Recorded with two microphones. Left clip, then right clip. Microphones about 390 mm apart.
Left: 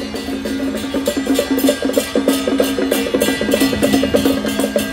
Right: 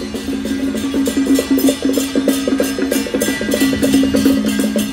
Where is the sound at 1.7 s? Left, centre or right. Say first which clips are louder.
Left 1 dB; centre.